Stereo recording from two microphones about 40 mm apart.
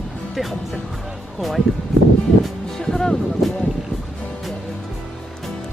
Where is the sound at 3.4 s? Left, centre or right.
Centre.